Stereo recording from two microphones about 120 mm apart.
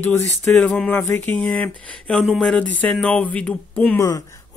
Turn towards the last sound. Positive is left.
turn(degrees=10)  # may be behind; listen again after turning